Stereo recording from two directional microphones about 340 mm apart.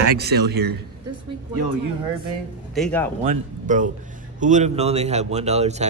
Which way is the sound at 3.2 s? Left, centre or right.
Right.